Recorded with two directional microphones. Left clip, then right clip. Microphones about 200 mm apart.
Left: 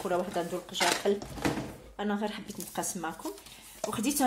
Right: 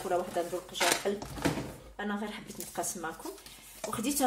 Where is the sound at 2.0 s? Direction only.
50° left (ahead or behind).